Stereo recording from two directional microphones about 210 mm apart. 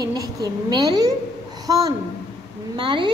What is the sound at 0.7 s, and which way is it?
A woman's voice, 20° right (ahead or behind).